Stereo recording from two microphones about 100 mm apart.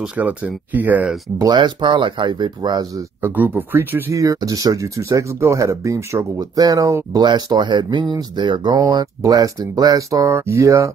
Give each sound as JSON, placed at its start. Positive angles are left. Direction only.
{"t": 0.7, "sound": "speech", "side_deg": -15}
{"t": 1.4, "sound": "speech", "side_deg": -50}
{"t": 3.2, "sound": "speech", "side_deg": -20}
{"t": 4.1, "sound": "speech", "side_deg": -35}